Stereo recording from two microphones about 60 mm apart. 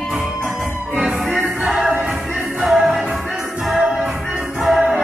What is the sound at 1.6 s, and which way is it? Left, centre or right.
Music, centre.